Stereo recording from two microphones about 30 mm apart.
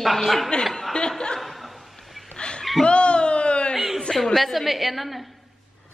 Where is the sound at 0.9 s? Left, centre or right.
Left.